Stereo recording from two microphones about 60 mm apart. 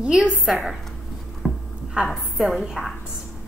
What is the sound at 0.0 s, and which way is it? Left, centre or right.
Speech, centre.